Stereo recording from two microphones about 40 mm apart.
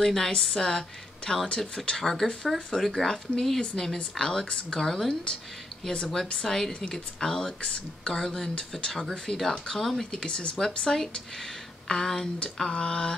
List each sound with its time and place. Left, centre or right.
0.0 s speech: centre
10.2 s speech: left
10.6 s speech: centre